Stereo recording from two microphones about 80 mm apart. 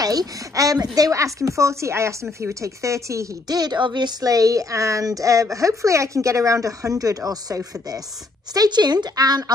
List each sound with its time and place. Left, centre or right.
0.0 s speech: right
3.4 s speech: right
8.5 s speech: right